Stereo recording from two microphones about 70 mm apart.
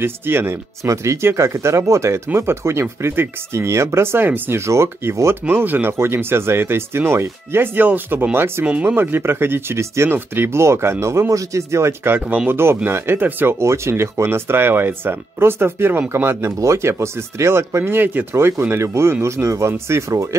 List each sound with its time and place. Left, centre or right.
0.0 s speech: right
0.8 s speech: right
5.5 s speech: right
16.5 s speech: right